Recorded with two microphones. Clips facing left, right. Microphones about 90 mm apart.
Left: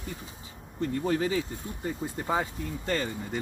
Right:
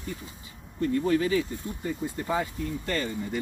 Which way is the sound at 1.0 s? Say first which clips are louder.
Right 2 dB; 30° left (ahead or behind).